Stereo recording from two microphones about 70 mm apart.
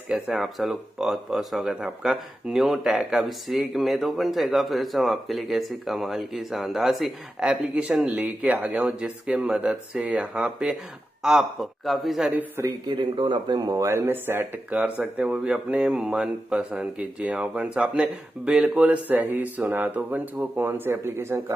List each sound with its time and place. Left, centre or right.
0.1 s speech: centre
7.4 s speech: centre
12.6 s speech: right
13.8 s speech: right
14.7 s speech: centre
19.0 s speech: right